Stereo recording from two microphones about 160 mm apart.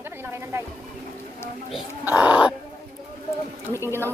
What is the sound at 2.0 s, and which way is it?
Speech, 10° right (ahead or behind).